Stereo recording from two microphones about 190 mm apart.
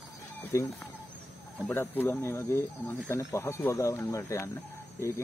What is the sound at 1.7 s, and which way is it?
Speech, 10° left (ahead or behind).